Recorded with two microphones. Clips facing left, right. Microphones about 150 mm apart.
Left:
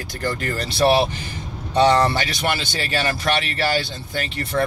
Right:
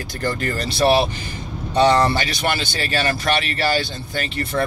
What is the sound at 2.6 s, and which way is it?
Speech, 20° left (ahead or behind).